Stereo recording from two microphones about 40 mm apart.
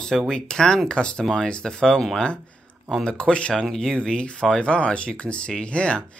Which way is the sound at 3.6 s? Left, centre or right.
Centre.